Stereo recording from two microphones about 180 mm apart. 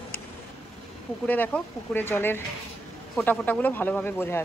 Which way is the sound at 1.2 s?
10° left (ahead or behind).